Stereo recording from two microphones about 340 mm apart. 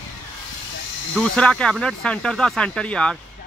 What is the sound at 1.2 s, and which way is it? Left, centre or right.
Speech, centre.